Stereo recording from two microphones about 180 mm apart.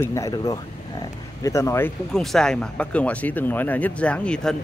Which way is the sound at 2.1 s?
5° left (ahead or behind).